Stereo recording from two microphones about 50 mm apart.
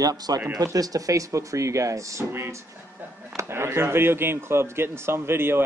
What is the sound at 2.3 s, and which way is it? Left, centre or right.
Speech, right.